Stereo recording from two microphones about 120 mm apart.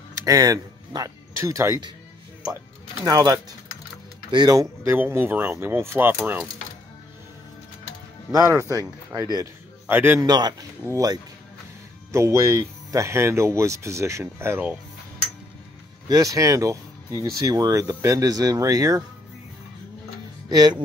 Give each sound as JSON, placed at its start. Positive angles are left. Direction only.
{"t": 0.1, "sound": "speech", "side_deg": -30}
{"t": 3.1, "sound": "speech", "side_deg": -35}
{"t": 4.8, "sound": "speech", "side_deg": -15}
{"t": 8.3, "sound": "speech", "side_deg": -25}
{"t": 9.8, "sound": "speech", "side_deg": -15}
{"t": 10.2, "sound": "speech", "side_deg": -35}
{"t": 16.1, "sound": "speech", "side_deg": -30}
{"t": 20.4, "sound": "music", "side_deg": -35}